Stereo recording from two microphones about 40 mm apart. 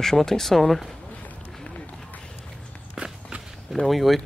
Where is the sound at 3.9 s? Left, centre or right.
Centre.